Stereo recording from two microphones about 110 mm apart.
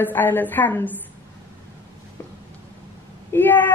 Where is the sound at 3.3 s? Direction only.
15° left (ahead or behind).